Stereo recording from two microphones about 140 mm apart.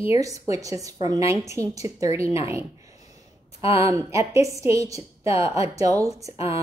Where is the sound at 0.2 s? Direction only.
25° right (ahead or behind).